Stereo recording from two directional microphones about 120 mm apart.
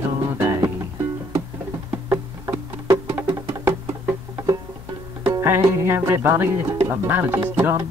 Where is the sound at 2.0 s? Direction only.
25° right (ahead or behind).